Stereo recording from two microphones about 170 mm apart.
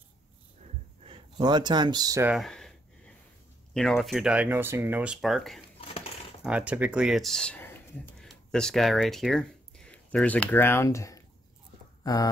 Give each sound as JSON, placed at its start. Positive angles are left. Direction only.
{"t": 1.0, "sound": "speech", "side_deg": -30}
{"t": 2.2, "sound": "speech", "side_deg": 0}
{"t": 3.7, "sound": "speech", "side_deg": 0}
{"t": 5.8, "sound": "a sound", "side_deg": 35}
{"t": 6.4, "sound": "speech", "side_deg": -5}